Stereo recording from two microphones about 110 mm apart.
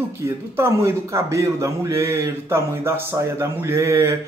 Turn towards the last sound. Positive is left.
turn(degrees=-30)  # may be behind; listen again after turning